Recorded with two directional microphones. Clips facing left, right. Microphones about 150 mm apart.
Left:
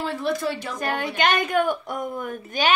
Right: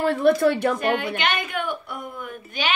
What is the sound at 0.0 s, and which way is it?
Speech, 55° right (ahead or behind).